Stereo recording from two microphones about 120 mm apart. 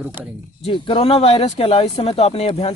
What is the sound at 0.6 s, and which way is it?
Speech, 50° left (ahead or behind).